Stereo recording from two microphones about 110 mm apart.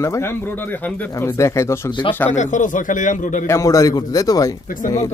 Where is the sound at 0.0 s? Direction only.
25° left (ahead or behind).